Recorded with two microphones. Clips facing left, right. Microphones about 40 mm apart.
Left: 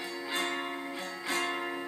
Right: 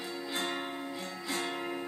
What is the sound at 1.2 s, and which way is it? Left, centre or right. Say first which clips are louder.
Music: left 4 dB; left.